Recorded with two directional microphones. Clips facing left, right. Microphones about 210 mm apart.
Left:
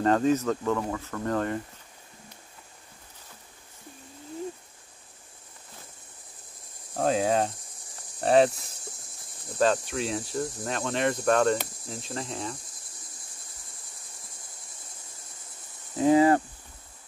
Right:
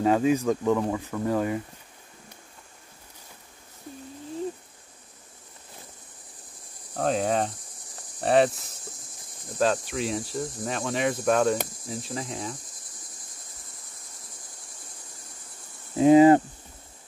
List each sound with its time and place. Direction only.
0.0 s speech: 10° right (ahead or behind)
6.9 s cricket: centre (ahead or behind)
16.0 s speech: 20° right (ahead or behind)